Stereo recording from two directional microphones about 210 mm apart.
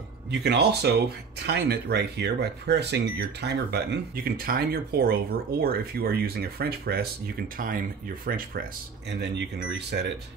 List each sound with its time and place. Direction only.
0.3 s speech: 55° right (ahead or behind)